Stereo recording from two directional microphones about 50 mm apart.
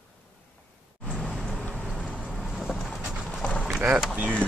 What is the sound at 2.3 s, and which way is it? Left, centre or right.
Vehicle, centre.